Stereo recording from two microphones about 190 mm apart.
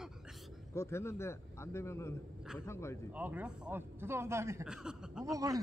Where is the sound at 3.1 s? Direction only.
10° right (ahead or behind).